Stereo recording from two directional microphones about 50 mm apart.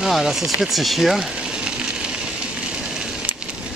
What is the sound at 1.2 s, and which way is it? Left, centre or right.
Frying, centre.